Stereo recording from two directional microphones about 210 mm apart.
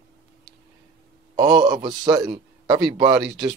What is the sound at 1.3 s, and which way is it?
A man's voice, 15° right (ahead or behind).